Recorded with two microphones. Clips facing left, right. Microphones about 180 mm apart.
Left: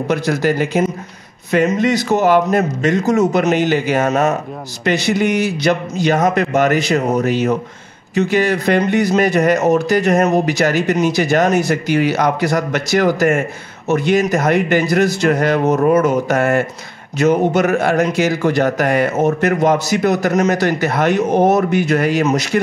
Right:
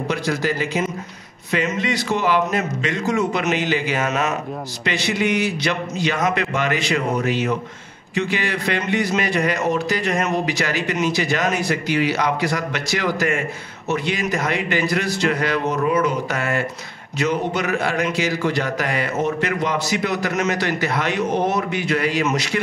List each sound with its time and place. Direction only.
0.1 s a man's voice: 50° left (ahead or behind)